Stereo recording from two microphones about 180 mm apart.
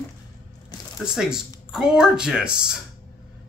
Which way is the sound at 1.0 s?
5° right (ahead or behind).